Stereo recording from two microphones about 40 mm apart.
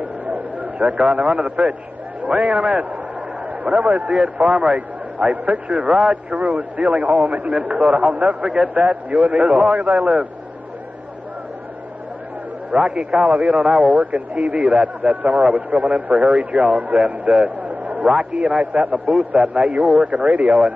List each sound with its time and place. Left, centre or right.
0.0 s a sound: right
2.2 s a man's voice: right
12.7 s a man's voice: right